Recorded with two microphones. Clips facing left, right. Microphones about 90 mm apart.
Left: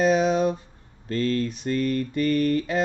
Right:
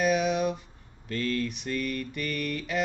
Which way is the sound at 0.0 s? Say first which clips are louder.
Left 5 dB; 30° left (ahead or behind).